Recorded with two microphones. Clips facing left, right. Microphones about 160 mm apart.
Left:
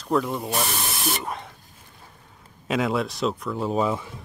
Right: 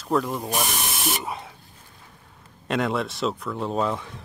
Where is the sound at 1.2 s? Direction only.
5° right (ahead or behind).